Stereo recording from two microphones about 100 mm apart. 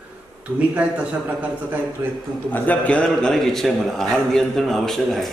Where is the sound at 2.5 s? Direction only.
15° left (ahead or behind).